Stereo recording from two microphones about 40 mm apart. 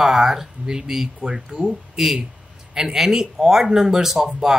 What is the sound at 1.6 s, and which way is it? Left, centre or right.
Speech, centre.